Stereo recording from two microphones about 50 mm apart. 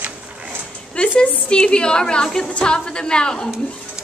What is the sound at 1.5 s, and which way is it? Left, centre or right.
A woman's voice, centre.